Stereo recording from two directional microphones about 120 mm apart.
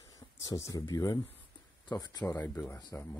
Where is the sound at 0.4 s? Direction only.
25° left (ahead or behind).